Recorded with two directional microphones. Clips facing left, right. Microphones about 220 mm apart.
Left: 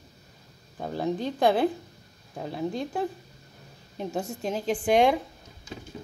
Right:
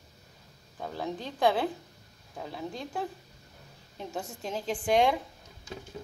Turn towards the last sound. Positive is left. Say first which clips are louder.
# left 4 dB
turn(degrees=15)  # may be behind; listen again after turning